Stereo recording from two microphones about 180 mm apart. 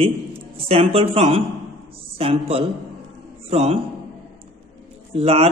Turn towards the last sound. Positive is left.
turn(degrees=-35)  # may be behind; listen again after turning